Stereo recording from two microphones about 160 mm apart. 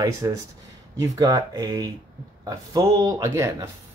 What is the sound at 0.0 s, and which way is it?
Speech, 20° right (ahead or behind).